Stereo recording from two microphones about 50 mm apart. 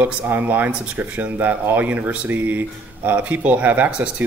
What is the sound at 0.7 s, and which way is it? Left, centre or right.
Speech, right.